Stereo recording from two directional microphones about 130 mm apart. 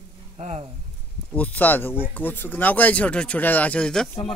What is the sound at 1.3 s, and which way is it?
Speech, 10° left (ahead or behind).